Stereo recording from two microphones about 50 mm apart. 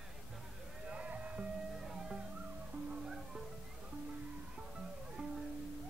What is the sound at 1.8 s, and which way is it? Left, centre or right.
Music, centre.